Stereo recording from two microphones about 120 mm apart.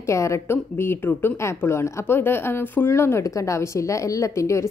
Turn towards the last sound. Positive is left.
turn(degrees=25)  # may be behind; listen again after turning